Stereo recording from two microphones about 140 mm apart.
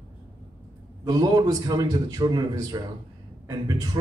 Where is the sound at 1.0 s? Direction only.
25° right (ahead or behind).